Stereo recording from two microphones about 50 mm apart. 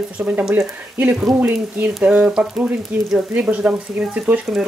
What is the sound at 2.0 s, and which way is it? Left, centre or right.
Speech, right.